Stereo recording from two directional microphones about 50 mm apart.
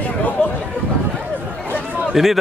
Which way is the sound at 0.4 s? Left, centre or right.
Centre.